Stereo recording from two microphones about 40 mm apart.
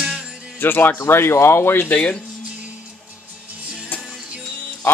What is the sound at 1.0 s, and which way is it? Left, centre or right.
Speech, left.